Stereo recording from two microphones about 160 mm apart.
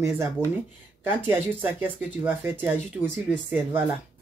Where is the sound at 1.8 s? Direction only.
10° right (ahead or behind).